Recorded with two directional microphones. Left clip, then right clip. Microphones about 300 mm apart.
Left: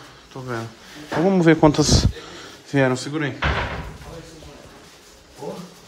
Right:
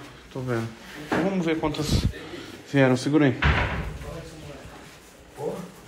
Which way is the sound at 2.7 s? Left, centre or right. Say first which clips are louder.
Left 2 dB; centre.